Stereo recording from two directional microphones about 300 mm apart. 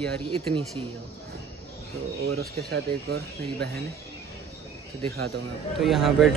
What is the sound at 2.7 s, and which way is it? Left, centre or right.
Speech, right.